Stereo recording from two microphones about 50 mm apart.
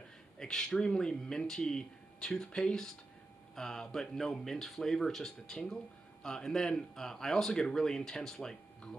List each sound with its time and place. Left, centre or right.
0.4 s speech: centre